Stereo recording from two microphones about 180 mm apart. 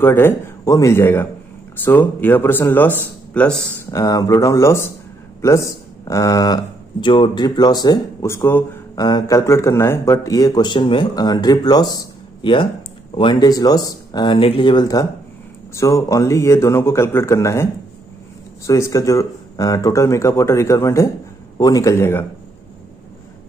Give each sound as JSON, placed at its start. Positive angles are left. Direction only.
{"t": 0.0, "sound": "a man's voice", "side_deg": 10}
{"t": 3.9, "sound": "speech", "side_deg": 20}
{"t": 18.7, "sound": "speech", "side_deg": 15}